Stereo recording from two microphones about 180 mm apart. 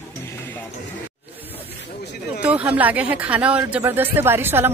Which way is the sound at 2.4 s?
10° right (ahead or behind).